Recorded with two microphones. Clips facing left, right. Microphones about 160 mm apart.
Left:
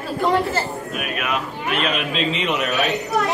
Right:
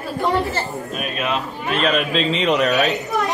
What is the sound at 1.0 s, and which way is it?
Speech, 25° right (ahead or behind).